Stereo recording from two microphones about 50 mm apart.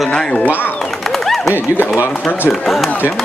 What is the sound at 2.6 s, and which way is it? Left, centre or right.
Speech, centre.